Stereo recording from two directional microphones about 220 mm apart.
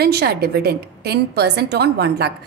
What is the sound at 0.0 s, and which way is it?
A woman's voice, 45° right (ahead or behind).